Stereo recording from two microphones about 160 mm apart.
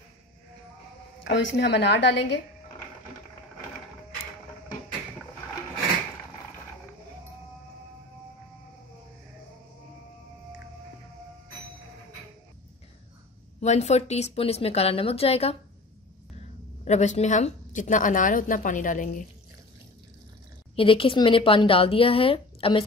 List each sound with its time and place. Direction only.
1.2 s a woman's voice: 90° left
13.6 s speech: 45° left (ahead or behind)
16.8 s a woman's voice: 45° left (ahead or behind)
20.7 s speech: 35° left (ahead or behind)